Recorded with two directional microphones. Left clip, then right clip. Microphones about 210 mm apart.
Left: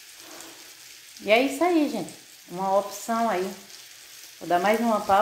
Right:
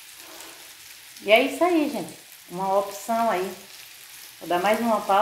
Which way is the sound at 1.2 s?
35° left (ahead or behind).